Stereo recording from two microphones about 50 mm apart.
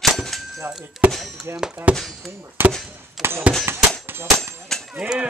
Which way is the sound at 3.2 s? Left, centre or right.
Right.